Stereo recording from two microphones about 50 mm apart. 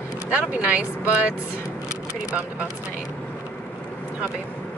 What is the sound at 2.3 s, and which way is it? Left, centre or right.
Speech, right.